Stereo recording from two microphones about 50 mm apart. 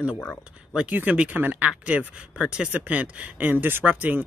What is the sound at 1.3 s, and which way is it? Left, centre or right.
Speech, right.